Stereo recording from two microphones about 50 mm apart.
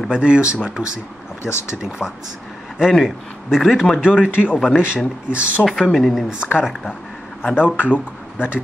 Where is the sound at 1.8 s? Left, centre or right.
Centre.